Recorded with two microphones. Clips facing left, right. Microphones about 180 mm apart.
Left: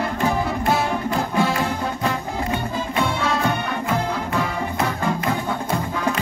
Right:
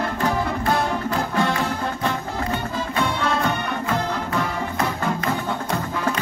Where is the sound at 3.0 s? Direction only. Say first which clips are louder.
Even; centre (ahead or behind).